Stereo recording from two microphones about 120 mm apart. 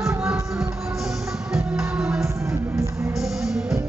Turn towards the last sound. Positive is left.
turn(degrees=0)  # may be behind; listen again after turning